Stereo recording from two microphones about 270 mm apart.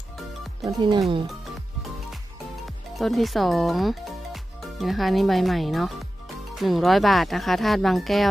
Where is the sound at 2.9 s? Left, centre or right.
Centre.